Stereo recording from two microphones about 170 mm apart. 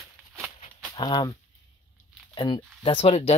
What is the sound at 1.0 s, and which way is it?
Chopping, 25° left (ahead or behind).